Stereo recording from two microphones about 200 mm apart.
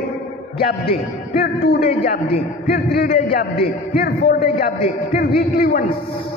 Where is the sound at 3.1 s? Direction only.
35° left (ahead or behind).